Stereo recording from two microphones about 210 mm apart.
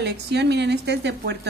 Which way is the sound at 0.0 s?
55° right (ahead or behind).